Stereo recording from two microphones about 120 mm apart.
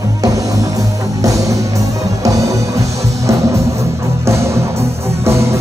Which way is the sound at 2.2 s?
25° right (ahead or behind).